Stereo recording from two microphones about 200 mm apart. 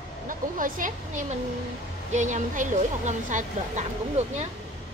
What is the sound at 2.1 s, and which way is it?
Speech, 40° right (ahead or behind).